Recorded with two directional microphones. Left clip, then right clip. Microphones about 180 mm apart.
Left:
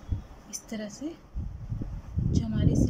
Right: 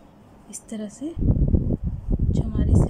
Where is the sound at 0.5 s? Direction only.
15° right (ahead or behind).